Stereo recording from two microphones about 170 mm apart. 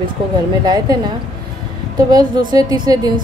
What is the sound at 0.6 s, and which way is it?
Speech, 20° right (ahead or behind).